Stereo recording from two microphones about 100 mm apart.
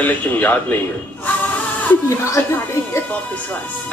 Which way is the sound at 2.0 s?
30° left (ahead or behind).